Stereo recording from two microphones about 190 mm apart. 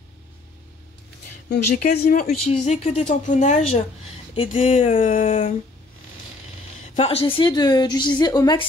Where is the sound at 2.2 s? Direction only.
35° left (ahead or behind).